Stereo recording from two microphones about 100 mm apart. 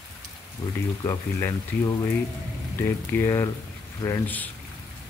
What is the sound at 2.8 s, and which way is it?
Speech, 25° left (ahead or behind).